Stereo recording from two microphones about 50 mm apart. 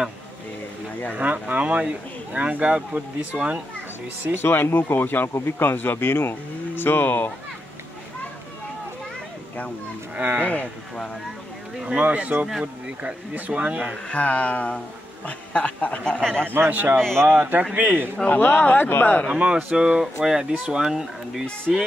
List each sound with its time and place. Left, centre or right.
1.1 s speech: right
4.4 s speech: left
10.1 s speech: right
10.4 s speech: left
11.8 s speech: right
13.5 s speech: right
14.0 s speech: left
16.0 s speech: centre
16.5 s a man's voice: right
18.3 s speech: left
19.2 s speech: right
19.7 s speech: centre